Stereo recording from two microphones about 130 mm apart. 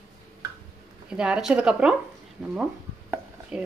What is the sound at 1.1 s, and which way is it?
Speech, 5° right (ahead or behind).